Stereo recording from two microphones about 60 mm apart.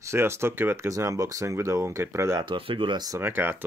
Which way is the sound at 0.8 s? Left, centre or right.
Right.